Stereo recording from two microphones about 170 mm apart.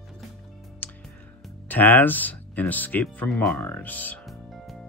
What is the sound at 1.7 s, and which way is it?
Speech, 10° left (ahead or behind).